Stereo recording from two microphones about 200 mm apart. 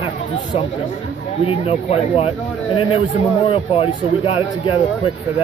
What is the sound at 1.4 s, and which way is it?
Speech, 30° left (ahead or behind).